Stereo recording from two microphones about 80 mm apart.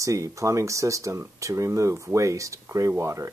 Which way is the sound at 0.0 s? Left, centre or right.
Right.